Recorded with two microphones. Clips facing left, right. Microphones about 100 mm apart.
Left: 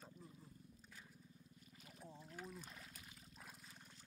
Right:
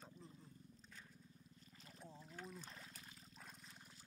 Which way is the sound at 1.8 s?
35° right (ahead or behind).